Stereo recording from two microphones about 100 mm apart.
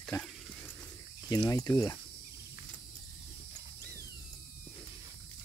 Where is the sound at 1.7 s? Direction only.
35° left (ahead or behind).